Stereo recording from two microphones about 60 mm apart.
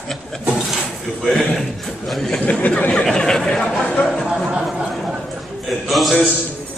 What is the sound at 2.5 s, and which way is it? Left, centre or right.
Speech, left.